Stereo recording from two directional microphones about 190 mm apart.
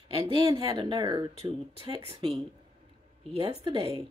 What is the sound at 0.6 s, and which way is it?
Speech, 20° right (ahead or behind).